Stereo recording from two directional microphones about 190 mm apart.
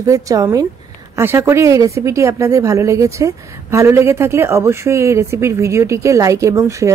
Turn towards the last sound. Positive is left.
turn(degrees=-15)  # may be behind; listen again after turning